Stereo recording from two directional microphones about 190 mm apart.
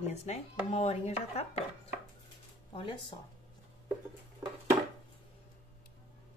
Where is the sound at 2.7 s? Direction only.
25° left (ahead or behind).